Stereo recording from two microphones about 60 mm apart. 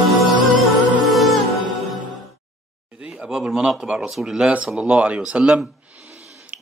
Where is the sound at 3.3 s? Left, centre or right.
Centre.